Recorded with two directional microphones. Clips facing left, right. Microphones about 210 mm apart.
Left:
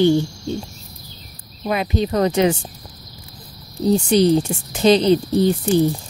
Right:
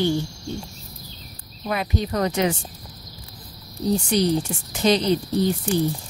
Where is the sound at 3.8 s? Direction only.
25° left (ahead or behind).